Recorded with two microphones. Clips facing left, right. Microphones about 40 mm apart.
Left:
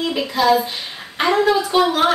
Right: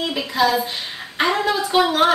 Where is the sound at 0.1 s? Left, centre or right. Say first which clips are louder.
Left 3 dB; centre.